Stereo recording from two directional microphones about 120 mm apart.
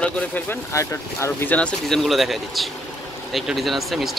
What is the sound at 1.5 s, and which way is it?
Speech, 5° left (ahead or behind).